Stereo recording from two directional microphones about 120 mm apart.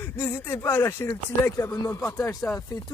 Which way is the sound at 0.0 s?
20° left (ahead or behind).